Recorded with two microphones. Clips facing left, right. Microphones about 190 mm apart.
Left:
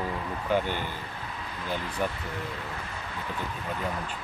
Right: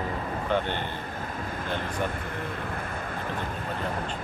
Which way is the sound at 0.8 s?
50° right (ahead or behind).